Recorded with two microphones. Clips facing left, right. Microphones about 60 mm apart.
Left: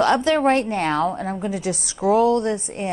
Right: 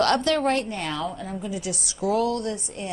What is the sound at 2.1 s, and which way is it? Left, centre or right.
Speech, left.